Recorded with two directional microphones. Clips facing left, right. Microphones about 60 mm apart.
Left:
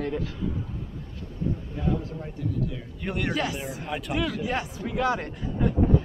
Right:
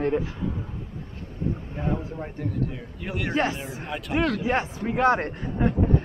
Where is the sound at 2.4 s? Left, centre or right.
Right.